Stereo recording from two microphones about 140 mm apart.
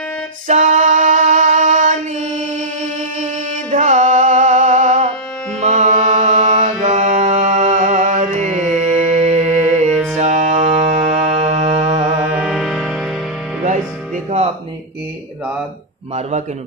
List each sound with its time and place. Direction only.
0.5 s singing: 60° right (ahead or behind)
3.7 s music: 55° right (ahead or behind)
5.6 s mantra: 55° right (ahead or behind)
10.1 s music: 55° right (ahead or behind)
12.3 s music: 5° right (ahead or behind)